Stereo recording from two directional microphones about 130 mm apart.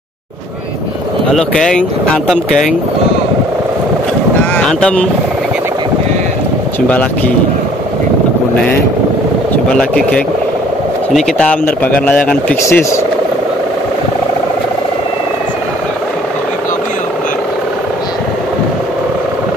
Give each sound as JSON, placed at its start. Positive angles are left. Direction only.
{"t": 1.3, "sound": "speech", "side_deg": 5}
{"t": 4.6, "sound": "speech", "side_deg": 10}
{"t": 6.9, "sound": "speech", "side_deg": 10}
{"t": 9.5, "sound": "speech", "side_deg": 5}
{"t": 12.6, "sound": "speech", "side_deg": 20}